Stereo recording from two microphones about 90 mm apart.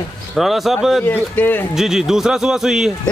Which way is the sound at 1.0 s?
20° left (ahead or behind).